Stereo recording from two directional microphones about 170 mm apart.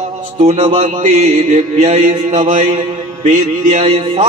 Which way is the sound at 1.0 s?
45° right (ahead or behind).